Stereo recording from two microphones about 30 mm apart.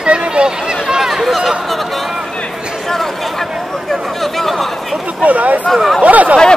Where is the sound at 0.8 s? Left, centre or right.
Centre.